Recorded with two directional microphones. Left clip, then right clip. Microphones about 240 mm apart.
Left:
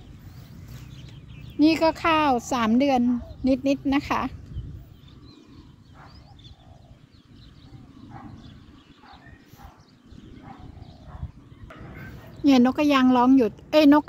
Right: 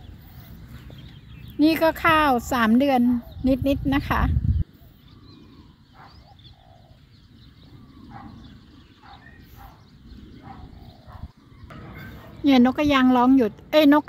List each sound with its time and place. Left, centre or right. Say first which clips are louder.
1.6 s a woman's voice: right 1 dB; centre
9.0 s a sound: right 3 dB; right
12.1 s a woman's voice: even; centre